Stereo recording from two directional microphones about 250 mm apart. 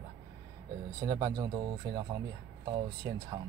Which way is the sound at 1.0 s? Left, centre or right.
Centre.